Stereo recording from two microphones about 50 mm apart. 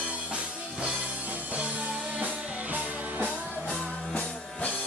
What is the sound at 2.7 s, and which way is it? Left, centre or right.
Music, right.